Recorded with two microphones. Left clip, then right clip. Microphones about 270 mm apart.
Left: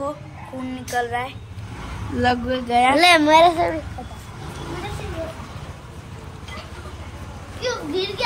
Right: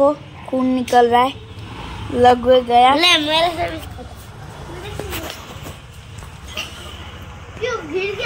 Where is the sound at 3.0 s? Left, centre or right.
Centre.